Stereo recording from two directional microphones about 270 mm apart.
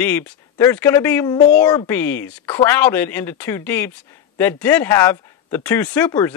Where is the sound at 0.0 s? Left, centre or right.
Centre.